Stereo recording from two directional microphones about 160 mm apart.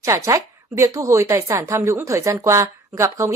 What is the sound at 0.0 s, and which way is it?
A woman's voice, 20° right (ahead or behind).